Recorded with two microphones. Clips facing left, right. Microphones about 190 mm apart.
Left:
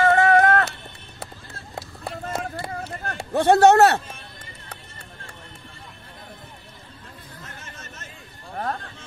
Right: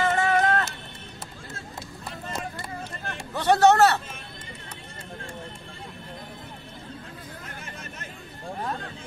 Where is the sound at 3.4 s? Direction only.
55° left (ahead or behind).